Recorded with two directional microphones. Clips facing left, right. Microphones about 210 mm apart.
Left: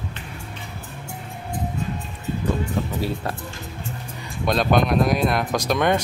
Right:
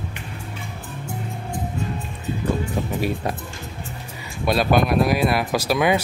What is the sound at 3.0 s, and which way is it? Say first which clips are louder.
Speech: right 2 dB; 15° right (ahead or behind).